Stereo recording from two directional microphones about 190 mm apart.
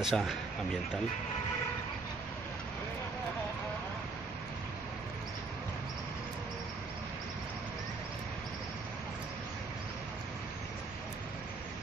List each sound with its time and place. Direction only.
0.0 s speech: centre (ahead or behind)